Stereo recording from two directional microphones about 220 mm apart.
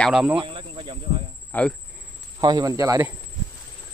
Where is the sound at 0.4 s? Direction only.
20° right (ahead or behind).